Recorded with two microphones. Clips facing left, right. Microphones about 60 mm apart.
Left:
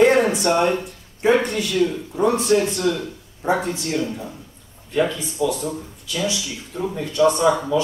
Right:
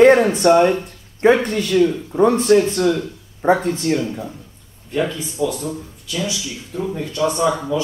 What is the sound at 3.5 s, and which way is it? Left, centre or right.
Speech, centre.